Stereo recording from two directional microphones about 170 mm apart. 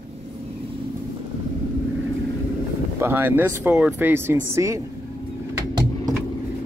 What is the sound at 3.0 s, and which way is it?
Speech, 10° right (ahead or behind).